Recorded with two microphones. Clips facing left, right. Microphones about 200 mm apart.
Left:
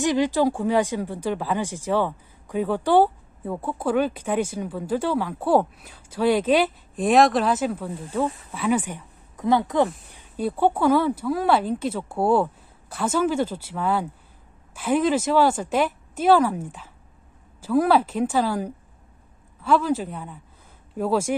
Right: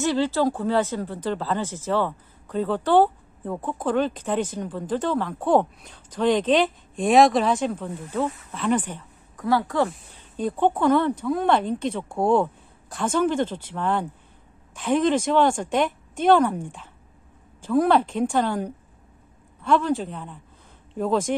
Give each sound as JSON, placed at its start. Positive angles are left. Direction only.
{"t": 0.0, "sound": "speech", "side_deg": 15}
{"t": 9.4, "sound": "speech", "side_deg": 20}
{"t": 10.1, "sound": "speech", "side_deg": 10}